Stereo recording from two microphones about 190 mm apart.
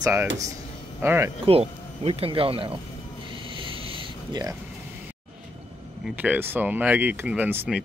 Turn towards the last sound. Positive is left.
turn(degrees=-10)  # may be behind; listen again after turning